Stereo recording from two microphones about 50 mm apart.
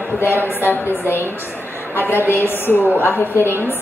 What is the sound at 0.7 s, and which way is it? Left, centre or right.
A woman's voice, left.